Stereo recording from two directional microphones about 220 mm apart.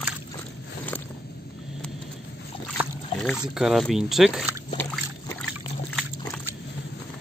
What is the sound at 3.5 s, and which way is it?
Speech, centre (ahead or behind).